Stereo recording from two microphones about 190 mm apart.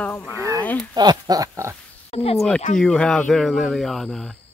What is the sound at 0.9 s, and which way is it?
Speech, 20° right (ahead or behind).